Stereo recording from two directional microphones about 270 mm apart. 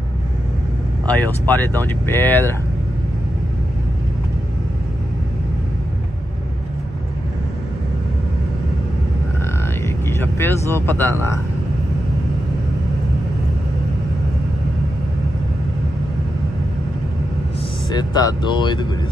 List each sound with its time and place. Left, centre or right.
1.0 s speech: centre
9.8 s a sound: centre
17.8 s speech: centre